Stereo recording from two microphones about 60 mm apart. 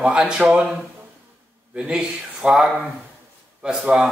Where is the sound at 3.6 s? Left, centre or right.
Centre.